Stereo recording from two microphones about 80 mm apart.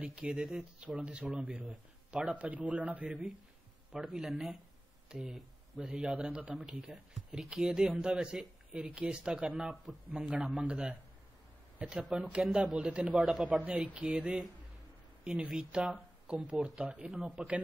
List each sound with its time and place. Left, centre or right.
0.0 s speech: centre
13.6 s speech: centre
16.8 s speech: centre
17.1 s speech: centre